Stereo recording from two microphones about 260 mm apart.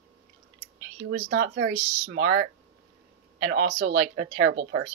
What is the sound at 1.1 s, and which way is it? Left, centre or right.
Speech, right.